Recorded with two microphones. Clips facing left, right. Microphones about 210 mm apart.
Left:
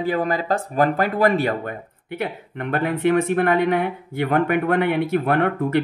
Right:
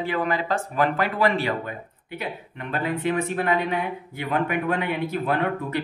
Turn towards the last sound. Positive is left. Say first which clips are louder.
# left 5 dB
turn(degrees=55)  # may be behind; listen again after turning